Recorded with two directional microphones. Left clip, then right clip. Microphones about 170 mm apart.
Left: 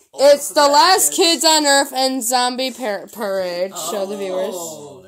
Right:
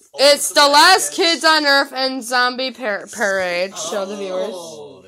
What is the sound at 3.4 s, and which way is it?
A woman's voice, 5° right (ahead or behind).